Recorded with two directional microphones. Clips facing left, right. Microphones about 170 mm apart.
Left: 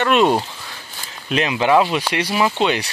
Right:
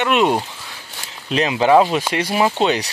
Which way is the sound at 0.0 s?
15° right (ahead or behind).